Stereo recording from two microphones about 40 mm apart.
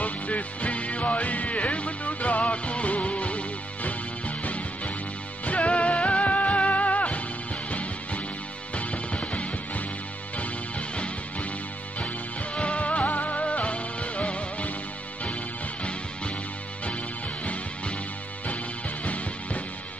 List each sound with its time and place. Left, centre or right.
0.0 s music: left
12.5 s music: left
15.8 s music: left
19.0 s music: left